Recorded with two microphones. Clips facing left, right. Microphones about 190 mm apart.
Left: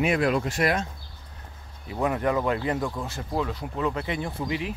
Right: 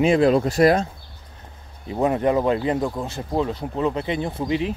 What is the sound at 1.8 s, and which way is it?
Speech, 25° right (ahead or behind).